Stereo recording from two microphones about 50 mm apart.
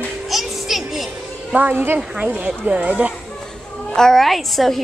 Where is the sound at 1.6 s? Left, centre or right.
Right.